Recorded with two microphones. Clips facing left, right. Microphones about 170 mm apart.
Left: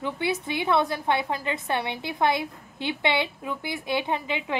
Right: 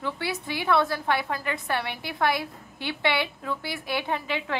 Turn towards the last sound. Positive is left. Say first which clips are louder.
# left 1 dB
turn(degrees=20)  # may be behind; listen again after turning